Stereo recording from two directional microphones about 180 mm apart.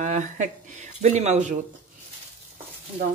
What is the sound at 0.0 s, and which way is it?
Speech, 45° right (ahead or behind).